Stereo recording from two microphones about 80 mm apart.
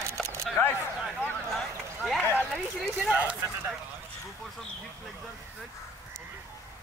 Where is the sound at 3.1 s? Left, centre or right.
Centre.